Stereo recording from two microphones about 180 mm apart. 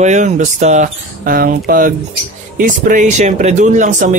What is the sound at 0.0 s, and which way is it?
Speech, 40° right (ahead or behind).